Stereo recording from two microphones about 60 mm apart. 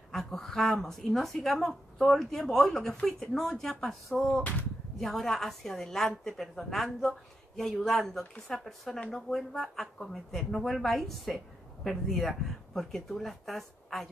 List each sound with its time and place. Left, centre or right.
0.1 s speech: centre
4.4 s speech: left
4.9 s speech: centre